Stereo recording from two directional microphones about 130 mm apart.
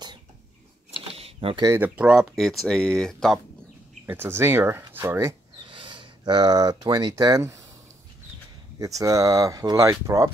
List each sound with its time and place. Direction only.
1.0 s a sound: 50° right (ahead or behind)
1.7 s speech: 10° right (ahead or behind); by 3.3 s 5° left (ahead or behind)
4.0 s speech: 15° right (ahead or behind)
5.7 s speech: 40° right (ahead or behind); by 7.6 s 25° right (ahead or behind)
8.7 s speech: 25° right (ahead or behind)